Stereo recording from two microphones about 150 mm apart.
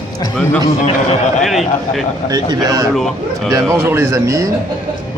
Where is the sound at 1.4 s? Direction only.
Centre (ahead or behind).